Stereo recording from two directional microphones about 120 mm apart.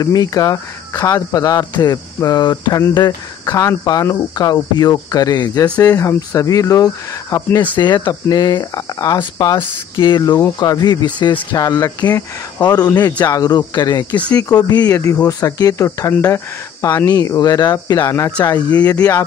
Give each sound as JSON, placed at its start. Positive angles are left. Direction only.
{"t": 0.0, "sound": "speech", "side_deg": 30}